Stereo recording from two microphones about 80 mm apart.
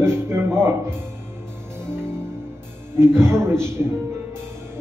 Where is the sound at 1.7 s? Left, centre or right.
Right.